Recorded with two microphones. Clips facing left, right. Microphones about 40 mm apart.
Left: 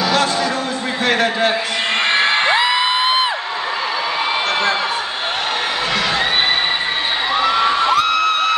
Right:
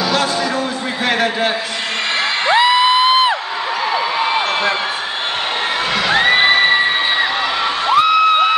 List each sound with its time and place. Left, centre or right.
1.0 s a man's voice: centre
2.5 s music: centre
6.1 s music: right
7.9 s a sound: centre